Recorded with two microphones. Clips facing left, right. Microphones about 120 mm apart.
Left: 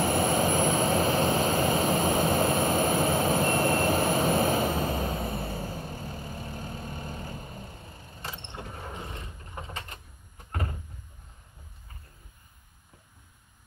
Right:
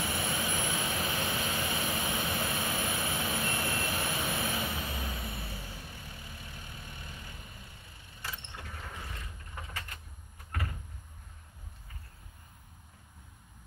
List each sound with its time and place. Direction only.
0.0 s vehicle: 40° left (ahead or behind); by 9.9 s 25° left (ahead or behind)
10.5 s door: 30° left (ahead or behind)